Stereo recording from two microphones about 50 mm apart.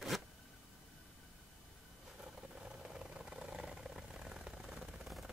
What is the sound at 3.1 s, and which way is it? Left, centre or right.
Vehicle, centre.